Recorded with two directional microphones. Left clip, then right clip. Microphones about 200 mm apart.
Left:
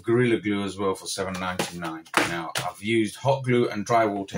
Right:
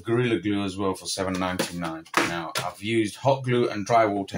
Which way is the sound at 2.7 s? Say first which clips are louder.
Left 2 dB; 30° right (ahead or behind).